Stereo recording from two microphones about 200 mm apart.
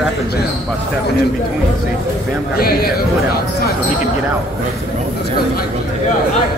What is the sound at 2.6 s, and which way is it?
Speech, 50° left (ahead or behind).